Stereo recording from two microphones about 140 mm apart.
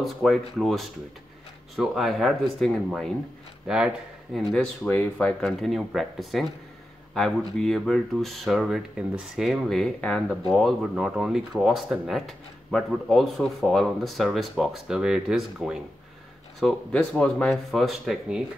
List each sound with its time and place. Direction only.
0.0 s speech: centre (ahead or behind)
4.8 s speech: 15° left (ahead or behind)
5.4 s speech: centre (ahead or behind)